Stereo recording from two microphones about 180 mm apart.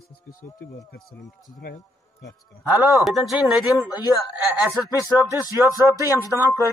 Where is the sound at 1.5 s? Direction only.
45° left (ahead or behind).